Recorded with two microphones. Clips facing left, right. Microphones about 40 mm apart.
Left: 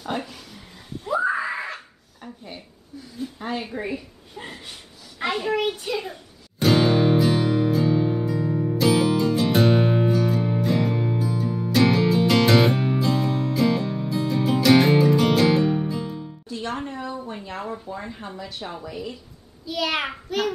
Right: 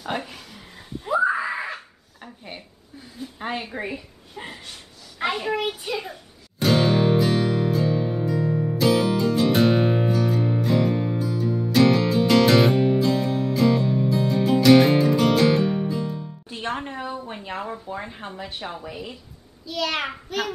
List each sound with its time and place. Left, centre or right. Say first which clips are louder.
0.0 s a sound: even; centre
1.0 s screaming: right 2 dB; centre
2.4 s a sound: even; right
3.7 s a woman's voice: left 1 dB; centre
6.6 s music: left 1 dB; centre
16.4 s music: even; right
17.3 s a sound: right 1 dB; right
17.8 s speech: right 1 dB; right
19.6 s a child's voice: left 1 dB; centre